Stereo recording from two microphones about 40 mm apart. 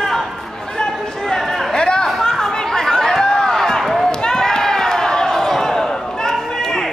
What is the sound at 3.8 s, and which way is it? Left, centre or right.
Basketball bounce, centre.